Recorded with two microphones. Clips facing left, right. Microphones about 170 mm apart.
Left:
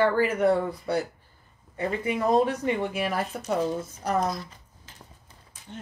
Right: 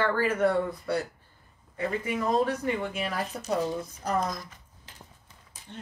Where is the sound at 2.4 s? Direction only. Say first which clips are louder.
Left 2 dB; 20° left (ahead or behind).